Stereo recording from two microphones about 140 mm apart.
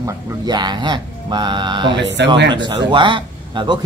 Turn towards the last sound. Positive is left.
turn(degrees=-35)  # may be behind; listen again after turning